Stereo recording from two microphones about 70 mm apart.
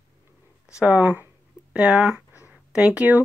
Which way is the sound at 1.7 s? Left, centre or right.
Centre.